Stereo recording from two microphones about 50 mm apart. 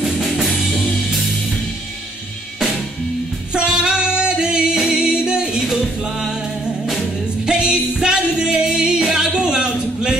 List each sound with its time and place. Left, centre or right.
0.0 s music: centre
3.5 s singing: centre
6.0 s music: centre